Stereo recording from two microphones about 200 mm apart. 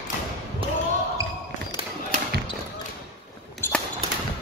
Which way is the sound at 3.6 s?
10° left (ahead or behind).